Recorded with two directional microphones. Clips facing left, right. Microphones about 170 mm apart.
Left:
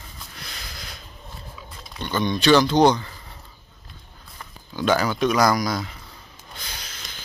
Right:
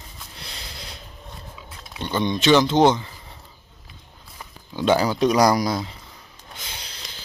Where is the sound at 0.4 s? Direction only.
30° right (ahead or behind).